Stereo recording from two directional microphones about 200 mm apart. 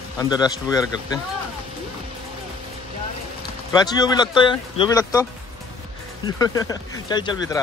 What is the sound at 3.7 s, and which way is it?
Speech, 20° left (ahead or behind).